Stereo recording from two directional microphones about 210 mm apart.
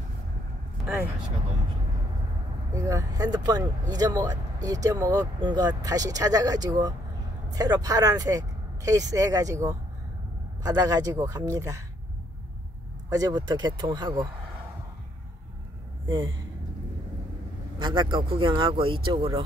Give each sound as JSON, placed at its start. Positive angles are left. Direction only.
{"t": 0.8, "sound": "vehicle", "side_deg": 0}
{"t": 2.7, "sound": "speech", "side_deg": -15}
{"t": 13.1, "sound": "speech", "side_deg": -20}
{"t": 17.7, "sound": "speech", "side_deg": -20}